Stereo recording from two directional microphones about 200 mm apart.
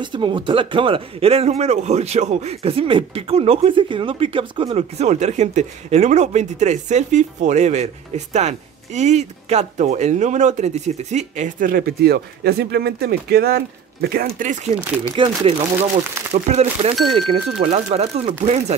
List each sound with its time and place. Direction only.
0.0 s speech: 25° right (ahead or behind); by 14.7 s 40° right (ahead or behind)
15.1 s speech: 25° right (ahead or behind)